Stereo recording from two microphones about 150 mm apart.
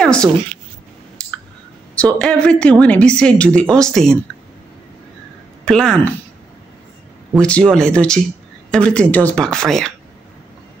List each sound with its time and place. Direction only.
0.0 s a sound: 5° left (ahead or behind)
2.1 s a woman's voice: 5° left (ahead or behind)
5.7 s speech: 5° left (ahead or behind)
7.3 s a woman's voice: 5° left (ahead or behind)